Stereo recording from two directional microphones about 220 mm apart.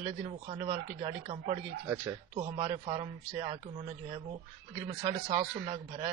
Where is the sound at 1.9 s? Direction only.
15° right (ahead or behind).